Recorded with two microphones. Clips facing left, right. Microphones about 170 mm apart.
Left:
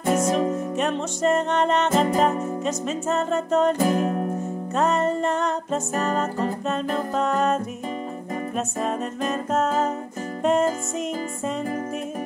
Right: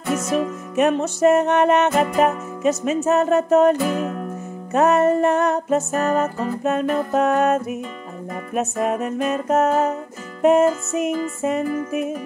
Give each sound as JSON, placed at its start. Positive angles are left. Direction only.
{"t": 0.0, "sound": "music", "side_deg": 35}
{"t": 0.7, "sound": "music", "side_deg": -10}
{"t": 3.8, "sound": "music", "side_deg": 35}
{"t": 4.7, "sound": "music", "side_deg": -10}